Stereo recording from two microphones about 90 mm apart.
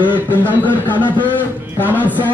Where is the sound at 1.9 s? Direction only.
20° right (ahead or behind).